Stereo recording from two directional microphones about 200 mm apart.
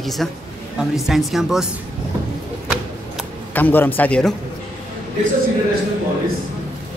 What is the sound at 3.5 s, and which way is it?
Speech, 10° left (ahead or behind).